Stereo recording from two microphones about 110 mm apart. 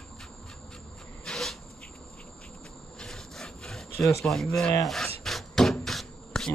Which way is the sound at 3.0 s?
5° left (ahead or behind).